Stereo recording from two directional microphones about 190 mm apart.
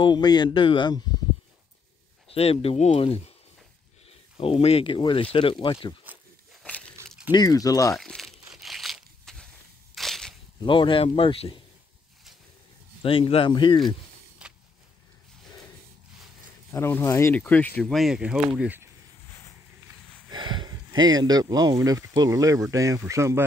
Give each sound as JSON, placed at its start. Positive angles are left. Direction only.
{"t": 0.0, "sound": "speech", "side_deg": 20}
{"t": 2.3, "sound": "speech", "side_deg": 30}
{"t": 7.2, "sound": "speech", "side_deg": 20}
{"t": 7.9, "sound": "crumpling", "side_deg": 0}
{"t": 9.9, "sound": "crushing", "side_deg": 0}
{"t": 10.6, "sound": "speech", "side_deg": 25}
{"t": 13.0, "sound": "speech", "side_deg": 30}
{"t": 14.4, "sound": "a sound", "side_deg": -5}
{"t": 16.7, "sound": "speech", "side_deg": 15}
{"t": 20.2, "sound": "speech", "side_deg": -25}